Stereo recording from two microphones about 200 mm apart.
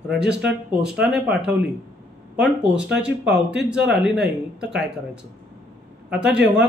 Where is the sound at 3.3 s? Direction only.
60° right (ahead or behind).